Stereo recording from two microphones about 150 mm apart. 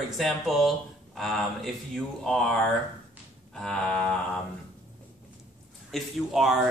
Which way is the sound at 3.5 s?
5° left (ahead or behind).